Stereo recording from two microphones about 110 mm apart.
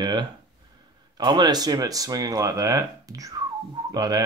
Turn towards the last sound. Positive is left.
turn(degrees=-35)  # may be behind; listen again after turning